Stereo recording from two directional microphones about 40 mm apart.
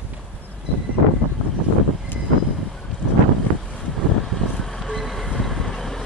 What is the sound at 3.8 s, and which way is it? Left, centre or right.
Vehicle, centre.